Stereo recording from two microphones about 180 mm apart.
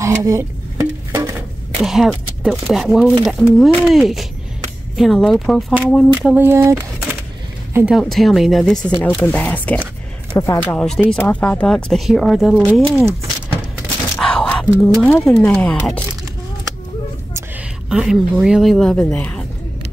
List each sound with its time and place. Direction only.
0.0 s music: 15° right (ahead or behind)
1.8 s speech: centre (ahead or behind)
6.3 s speech: 15° right (ahead or behind)
14.1 s a sound: 5° left (ahead or behind)
14.8 s speech: centre (ahead or behind)
17.8 s speech: 5° right (ahead or behind)